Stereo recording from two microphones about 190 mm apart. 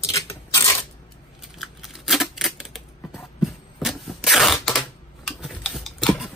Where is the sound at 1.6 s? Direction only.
Centre (ahead or behind).